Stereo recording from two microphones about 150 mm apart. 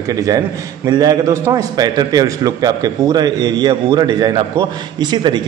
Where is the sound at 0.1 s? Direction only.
25° right (ahead or behind).